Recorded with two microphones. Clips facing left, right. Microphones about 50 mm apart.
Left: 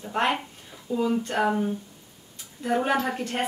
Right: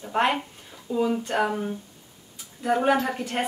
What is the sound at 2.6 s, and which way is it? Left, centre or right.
Speech, centre.